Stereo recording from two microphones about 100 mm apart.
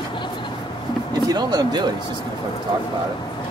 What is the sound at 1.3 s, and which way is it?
Speech, 40° right (ahead or behind).